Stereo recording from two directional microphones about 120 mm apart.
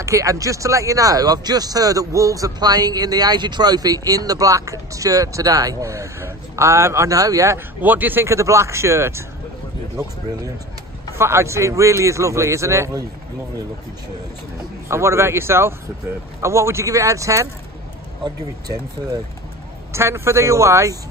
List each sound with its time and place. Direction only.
0.0 s speech: 25° right (ahead or behind)
11.1 s speech: 20° right (ahead or behind)
14.9 s speech: 25° right (ahead or behind)
19.9 s speech: 20° right (ahead or behind)